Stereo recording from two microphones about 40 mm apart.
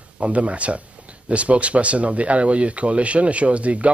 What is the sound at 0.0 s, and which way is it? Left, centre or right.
Speech, right.